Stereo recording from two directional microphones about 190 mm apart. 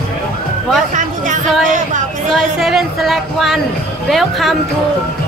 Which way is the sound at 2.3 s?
Centre (ahead or behind).